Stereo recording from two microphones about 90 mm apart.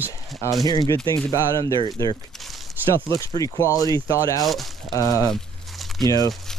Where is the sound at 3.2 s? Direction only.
35° left (ahead or behind).